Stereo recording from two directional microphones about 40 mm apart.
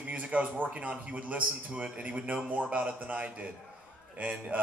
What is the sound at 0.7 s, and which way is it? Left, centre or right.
Speech, right.